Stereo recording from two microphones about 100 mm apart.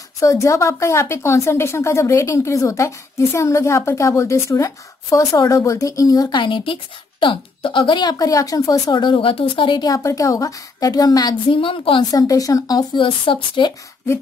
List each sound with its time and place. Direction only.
0.2 s speech: 30° left (ahead or behind)
6.3 s a woman's voice: 55° left (ahead or behind); by 8.9 s 35° left (ahead or behind)
8.9 s a woman's voice: 55° left (ahead or behind)
9.8 s a woman's voice: 35° left (ahead or behind)
11.6 s a woman's voice: 60° left (ahead or behind)
12.0 s a woman's voice: 35° left (ahead or behind)
12.9 s a woman's voice: 60° left (ahead or behind)